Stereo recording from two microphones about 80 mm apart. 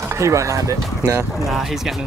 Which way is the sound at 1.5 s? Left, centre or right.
Centre.